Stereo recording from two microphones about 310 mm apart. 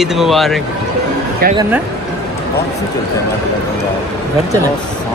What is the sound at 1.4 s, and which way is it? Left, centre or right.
Speech, right.